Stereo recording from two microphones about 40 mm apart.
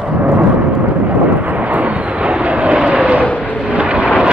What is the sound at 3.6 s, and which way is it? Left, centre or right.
Vehicle, right.